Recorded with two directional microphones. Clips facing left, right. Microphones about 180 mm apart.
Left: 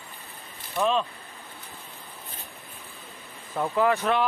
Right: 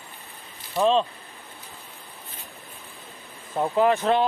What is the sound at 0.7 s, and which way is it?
Speech, 30° right (ahead or behind).